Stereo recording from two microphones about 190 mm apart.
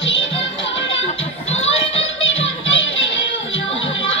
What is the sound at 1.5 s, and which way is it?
Music, 35° left (ahead or behind).